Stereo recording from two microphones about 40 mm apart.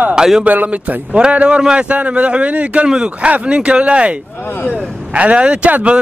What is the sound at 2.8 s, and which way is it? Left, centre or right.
Speech, centre.